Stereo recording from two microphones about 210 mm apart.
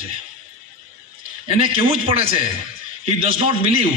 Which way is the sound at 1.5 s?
25° right (ahead or behind).